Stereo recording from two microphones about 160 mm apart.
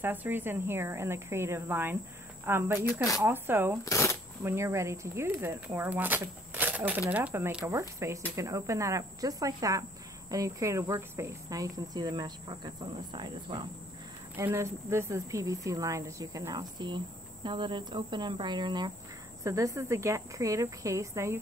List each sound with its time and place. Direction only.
0.0 s speech: 10° right (ahead or behind)
3.8 s speech: 20° left (ahead or behind)
4.4 s speech: 15° right (ahead or behind)
14.4 s speech: 15° right (ahead or behind)